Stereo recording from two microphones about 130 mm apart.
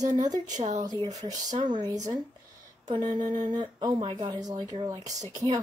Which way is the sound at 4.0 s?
45° right (ahead or behind).